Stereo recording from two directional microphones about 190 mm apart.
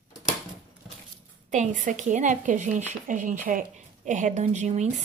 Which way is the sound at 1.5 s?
40° right (ahead or behind).